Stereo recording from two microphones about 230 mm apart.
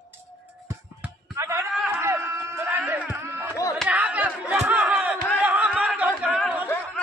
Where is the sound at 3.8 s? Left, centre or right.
Centre.